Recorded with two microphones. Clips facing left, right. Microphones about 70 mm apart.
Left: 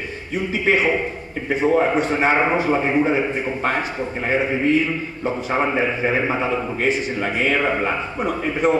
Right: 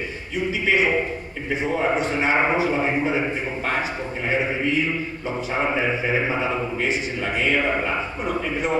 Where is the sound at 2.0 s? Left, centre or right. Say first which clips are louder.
Left 3 dB; left.